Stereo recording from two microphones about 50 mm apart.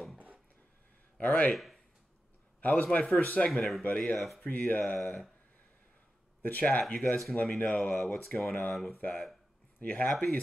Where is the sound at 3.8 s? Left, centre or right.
Left.